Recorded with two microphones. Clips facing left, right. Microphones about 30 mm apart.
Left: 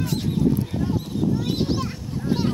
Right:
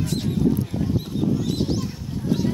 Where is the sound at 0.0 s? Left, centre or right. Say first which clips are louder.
Even; centre.